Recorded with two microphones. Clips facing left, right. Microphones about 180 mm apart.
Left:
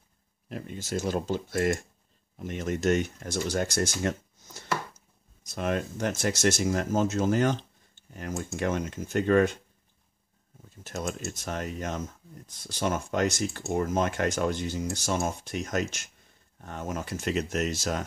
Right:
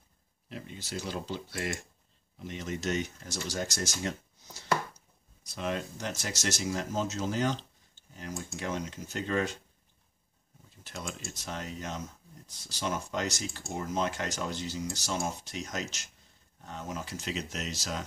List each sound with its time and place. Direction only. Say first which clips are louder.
0.5 s speech: left 7 dB; 45° left (ahead or behind)
10.8 s speech: left 7 dB; 45° left (ahead or behind)